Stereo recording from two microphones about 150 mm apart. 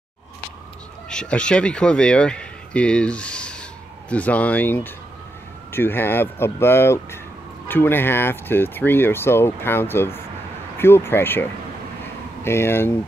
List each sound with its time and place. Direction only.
1.0 s speech: 5° left (ahead or behind)
12.4 s speech: 15° left (ahead or behind)